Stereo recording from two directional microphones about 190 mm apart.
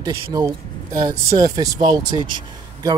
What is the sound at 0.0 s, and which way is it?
A man's voice, 20° right (ahead or behind).